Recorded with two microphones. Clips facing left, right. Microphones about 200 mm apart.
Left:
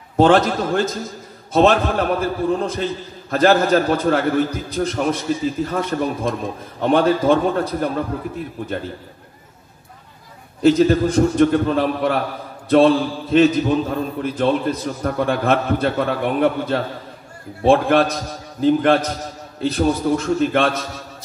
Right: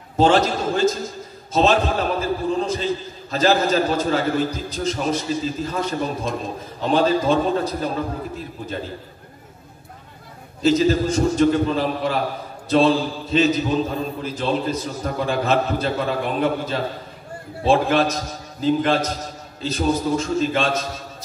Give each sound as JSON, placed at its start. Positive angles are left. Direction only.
{"t": 0.2, "sound": "a man's voice", "side_deg": 55}
{"t": 10.6, "sound": "a man's voice", "side_deg": 55}